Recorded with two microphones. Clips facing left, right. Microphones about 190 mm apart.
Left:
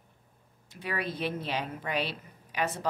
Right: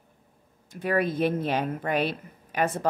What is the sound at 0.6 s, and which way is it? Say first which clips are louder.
Speech: right 9 dB; 50° right (ahead or behind).